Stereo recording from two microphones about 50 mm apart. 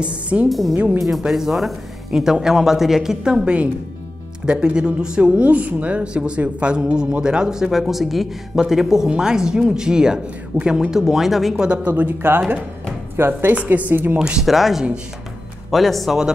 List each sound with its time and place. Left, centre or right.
0.0 s speech: right
0.5 s speech: centre
7.7 s speech: centre
11.6 s speech: right
12.2 s a woman's voice: right
14.1 s speech: centre
14.4 s speech: centre